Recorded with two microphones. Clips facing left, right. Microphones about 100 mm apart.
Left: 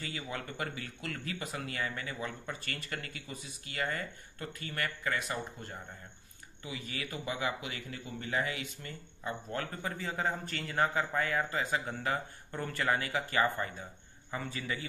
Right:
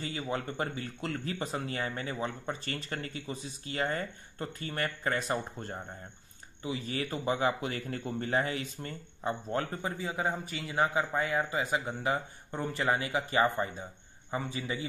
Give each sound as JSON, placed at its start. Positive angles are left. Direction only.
{"t": 0.0, "sound": "a man's voice", "side_deg": -25}